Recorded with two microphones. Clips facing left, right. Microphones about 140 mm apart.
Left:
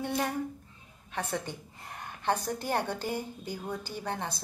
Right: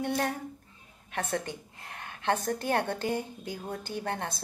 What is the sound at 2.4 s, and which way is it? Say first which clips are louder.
A woman's voice: right 2 dB; 55° right (ahead or behind).